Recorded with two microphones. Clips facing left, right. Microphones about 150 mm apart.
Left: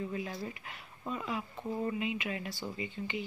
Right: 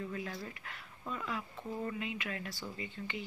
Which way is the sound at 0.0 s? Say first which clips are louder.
Left 3 dB; 20° left (ahead or behind).